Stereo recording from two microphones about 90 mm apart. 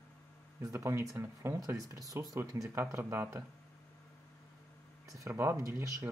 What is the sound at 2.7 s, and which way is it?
Speech, 25° right (ahead or behind).